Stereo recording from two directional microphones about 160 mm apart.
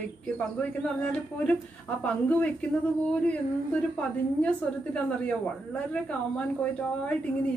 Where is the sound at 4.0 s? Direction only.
5° left (ahead or behind).